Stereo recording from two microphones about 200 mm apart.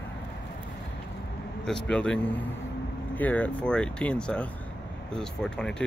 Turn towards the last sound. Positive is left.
turn(degrees=5)  # may be behind; listen again after turning